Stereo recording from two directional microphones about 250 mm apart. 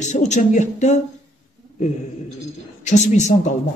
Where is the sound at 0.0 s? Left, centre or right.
Left.